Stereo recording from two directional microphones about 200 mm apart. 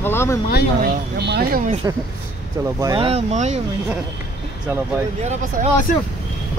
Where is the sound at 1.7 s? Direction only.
20° right (ahead or behind).